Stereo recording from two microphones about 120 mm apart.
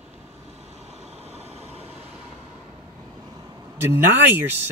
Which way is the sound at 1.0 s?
60° right (ahead or behind).